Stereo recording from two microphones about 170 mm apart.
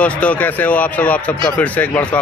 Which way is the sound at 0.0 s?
10° left (ahead or behind).